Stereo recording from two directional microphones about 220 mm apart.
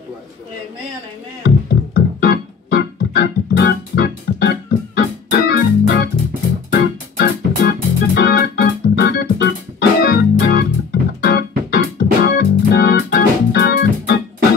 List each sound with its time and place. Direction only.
1.4 s music: 45° left (ahead or behind)